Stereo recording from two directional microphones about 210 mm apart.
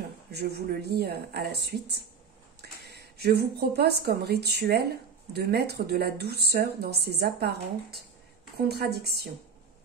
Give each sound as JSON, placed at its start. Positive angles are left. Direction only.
{"t": 0.3, "sound": "a woman's voice", "side_deg": -50}
{"t": 8.6, "sound": "a woman's voice", "side_deg": -50}